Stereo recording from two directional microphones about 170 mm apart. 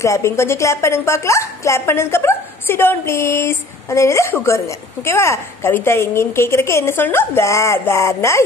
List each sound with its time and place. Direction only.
0.0 s a woman's voice: 15° left (ahead or behind)